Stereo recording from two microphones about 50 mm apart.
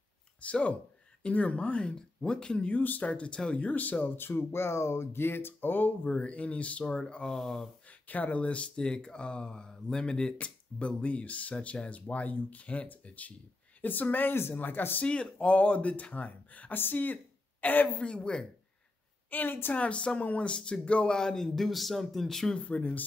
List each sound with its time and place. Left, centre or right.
0.4 s speech: left
2.7 s speech: left
4.0 s speech: left
6.0 s speech: left
7.3 s speech: centre
8.1 s speech: left
15.3 s speech: left
16.7 s a woman's voice: left
17.9 s speech: centre
19.3 s speech: left
19.7 s speech: left; by 22.7 s centre
22.7 s speech: left